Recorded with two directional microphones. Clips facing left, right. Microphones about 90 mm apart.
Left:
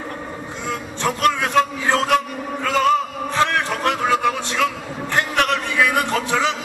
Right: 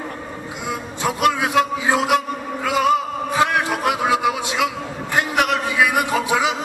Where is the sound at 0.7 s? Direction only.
10° right (ahead or behind).